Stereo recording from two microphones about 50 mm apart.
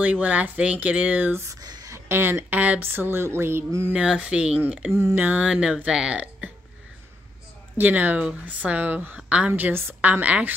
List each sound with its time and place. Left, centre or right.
0.0 s speech: right
1.3 s a sound: right
2.0 s a woman's voice: right
2.9 s speech: right
3.9 s speech: right
5.1 s a woman's voice: right
5.4 s speech: right
7.7 s a woman's voice: right
9.6 s a woman's voice: right
10.2 s a woman's voice: right